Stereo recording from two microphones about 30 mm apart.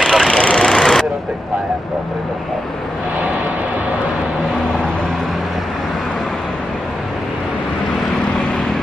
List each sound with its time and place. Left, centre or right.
0.0 s vehicle: centre
0.4 s vehicle: left
0.7 s vehicle: centre